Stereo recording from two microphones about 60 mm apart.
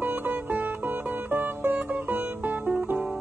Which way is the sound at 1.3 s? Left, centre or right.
Right.